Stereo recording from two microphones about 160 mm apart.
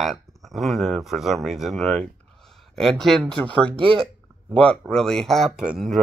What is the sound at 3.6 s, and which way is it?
Speech, 30° right (ahead or behind).